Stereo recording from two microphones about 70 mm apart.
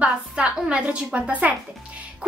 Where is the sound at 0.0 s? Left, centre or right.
Centre.